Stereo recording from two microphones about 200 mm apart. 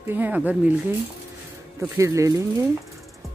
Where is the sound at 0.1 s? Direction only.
10° right (ahead or behind).